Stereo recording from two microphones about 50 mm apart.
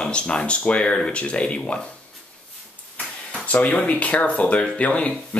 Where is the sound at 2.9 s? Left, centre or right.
Left.